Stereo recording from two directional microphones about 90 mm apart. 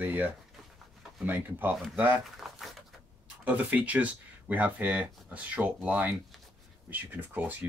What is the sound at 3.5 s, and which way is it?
Speech, 15° right (ahead or behind).